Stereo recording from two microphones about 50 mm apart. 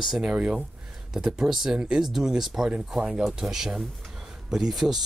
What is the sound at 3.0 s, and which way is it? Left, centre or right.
Speech, centre.